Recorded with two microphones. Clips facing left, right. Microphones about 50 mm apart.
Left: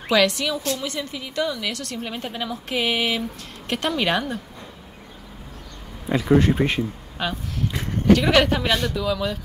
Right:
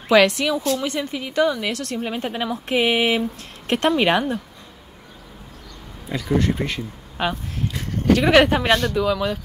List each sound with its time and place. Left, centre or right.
0.1 s speech: right
0.6 s speech: centre
0.8 s speech: right
2.0 s speech: centre
6.0 s speech: centre
8.1 s speech: centre